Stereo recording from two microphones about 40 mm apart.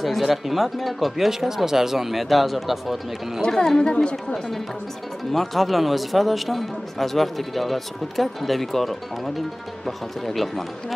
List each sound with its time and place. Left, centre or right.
0.0 s speech: centre
3.4 s speech: centre
3.8 s a woman's voice: left
5.3 s speech: centre